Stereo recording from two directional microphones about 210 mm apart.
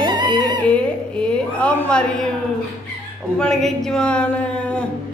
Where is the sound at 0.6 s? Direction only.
5° left (ahead or behind).